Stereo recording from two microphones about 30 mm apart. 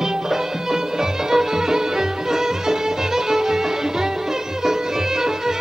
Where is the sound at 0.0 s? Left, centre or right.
Centre.